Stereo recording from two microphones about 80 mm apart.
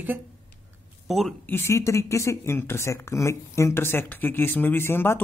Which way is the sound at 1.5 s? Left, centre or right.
Left.